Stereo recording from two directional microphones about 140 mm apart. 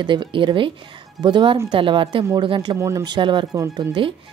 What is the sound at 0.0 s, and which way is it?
A woman's voice, 35° right (ahead or behind).